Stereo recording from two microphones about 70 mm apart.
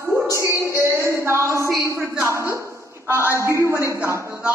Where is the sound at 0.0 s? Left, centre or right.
Right.